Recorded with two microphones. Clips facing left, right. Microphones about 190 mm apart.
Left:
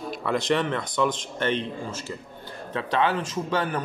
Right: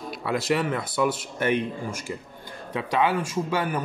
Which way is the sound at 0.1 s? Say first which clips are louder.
Left 1 dB; 5° right (ahead or behind).